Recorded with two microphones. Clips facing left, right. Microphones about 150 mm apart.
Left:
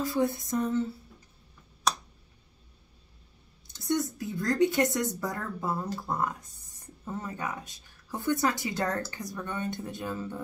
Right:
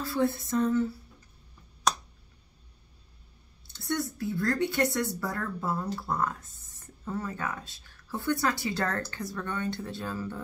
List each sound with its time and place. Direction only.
0.0 s a woman's voice: 20° left (ahead or behind)
3.6 s a woman's voice: 15° left (ahead or behind)